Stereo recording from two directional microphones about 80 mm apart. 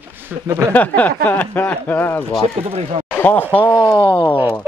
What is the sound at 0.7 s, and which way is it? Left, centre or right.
Speech, left.